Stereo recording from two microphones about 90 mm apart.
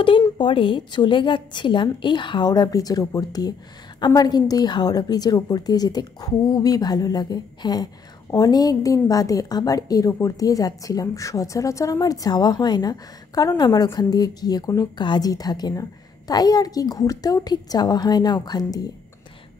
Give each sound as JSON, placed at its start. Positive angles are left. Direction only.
{"t": 0.4, "sound": "a woman's voice", "side_deg": 65}